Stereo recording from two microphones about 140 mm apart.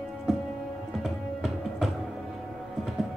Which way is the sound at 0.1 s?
Centre (ahead or behind).